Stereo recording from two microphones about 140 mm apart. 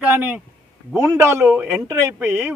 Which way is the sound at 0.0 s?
10° right (ahead or behind).